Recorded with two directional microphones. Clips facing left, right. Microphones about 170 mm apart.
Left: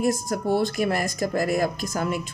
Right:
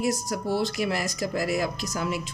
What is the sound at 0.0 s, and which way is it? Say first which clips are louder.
Speech: left 3 dB; 50° left (ahead or behind).